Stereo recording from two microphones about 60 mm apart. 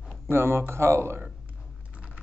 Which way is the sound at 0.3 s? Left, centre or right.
Right.